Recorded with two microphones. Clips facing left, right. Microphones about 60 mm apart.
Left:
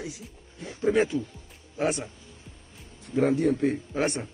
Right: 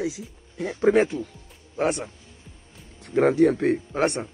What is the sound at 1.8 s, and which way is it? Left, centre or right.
Speech, right.